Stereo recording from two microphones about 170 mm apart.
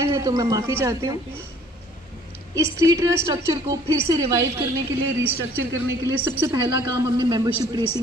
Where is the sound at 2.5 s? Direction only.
20° right (ahead or behind).